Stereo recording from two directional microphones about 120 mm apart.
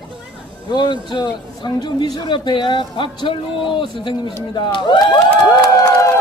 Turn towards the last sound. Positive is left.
turn(degrees=30)  # may be behind; listen again after turning